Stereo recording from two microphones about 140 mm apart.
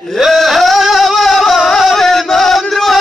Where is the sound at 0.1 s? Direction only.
Centre (ahead or behind).